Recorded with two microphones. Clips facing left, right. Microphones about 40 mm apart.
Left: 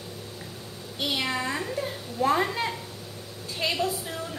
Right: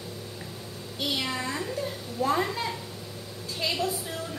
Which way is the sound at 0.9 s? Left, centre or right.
Left.